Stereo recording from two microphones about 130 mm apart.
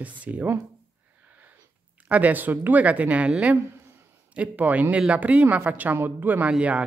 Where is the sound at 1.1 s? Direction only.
15° right (ahead or behind).